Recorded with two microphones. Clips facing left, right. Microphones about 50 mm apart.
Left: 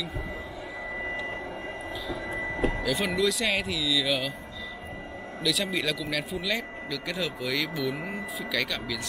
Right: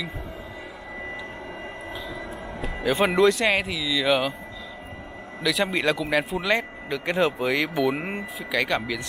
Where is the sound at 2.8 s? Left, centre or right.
Right.